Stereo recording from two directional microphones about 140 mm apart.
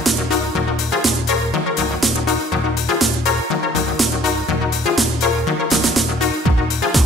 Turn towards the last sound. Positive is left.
turn(degrees=0)  # may be behind; listen again after turning